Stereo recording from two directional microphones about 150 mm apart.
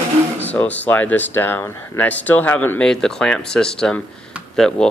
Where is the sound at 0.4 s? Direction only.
10° left (ahead or behind).